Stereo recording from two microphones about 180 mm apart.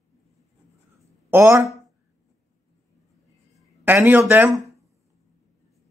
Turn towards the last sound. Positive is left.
turn(degrees=-15)  # may be behind; listen again after turning